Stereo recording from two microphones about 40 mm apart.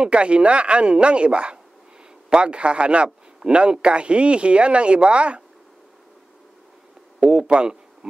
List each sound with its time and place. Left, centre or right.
0.0 s a man's voice: right
7.2 s speech: right